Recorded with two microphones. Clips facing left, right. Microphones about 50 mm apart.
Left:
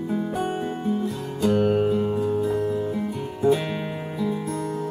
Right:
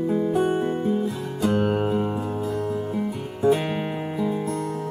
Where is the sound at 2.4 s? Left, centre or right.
Centre.